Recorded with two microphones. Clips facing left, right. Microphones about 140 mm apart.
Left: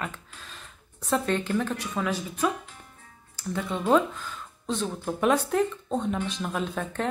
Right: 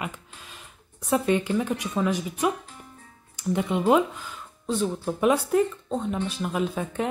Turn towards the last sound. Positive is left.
turn(degrees=-10)  # may be behind; listen again after turning